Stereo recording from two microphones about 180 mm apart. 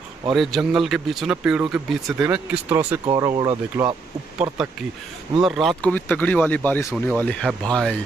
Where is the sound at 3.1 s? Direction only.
25° right (ahead or behind).